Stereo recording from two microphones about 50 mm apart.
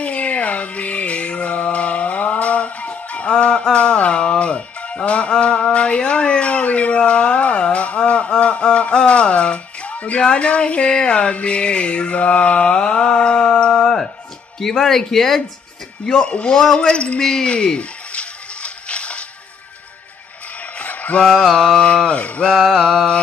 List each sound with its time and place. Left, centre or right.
0.0 s music: left
14.6 s speech: centre
16.1 s mantra: left
17.2 s music: centre
20.7 s a sound: left
21.4 s speech: centre
21.7 s mantra: left